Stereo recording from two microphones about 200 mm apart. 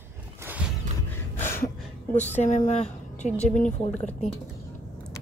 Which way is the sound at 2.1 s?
35° left (ahead or behind).